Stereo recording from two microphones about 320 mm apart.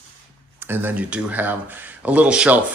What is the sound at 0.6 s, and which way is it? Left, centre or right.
Speech, centre.